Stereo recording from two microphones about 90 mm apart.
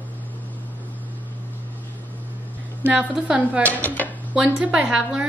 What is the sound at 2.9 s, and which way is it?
Speech, 10° right (ahead or behind).